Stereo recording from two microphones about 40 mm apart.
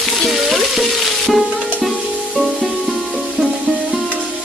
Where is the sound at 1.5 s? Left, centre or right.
Right.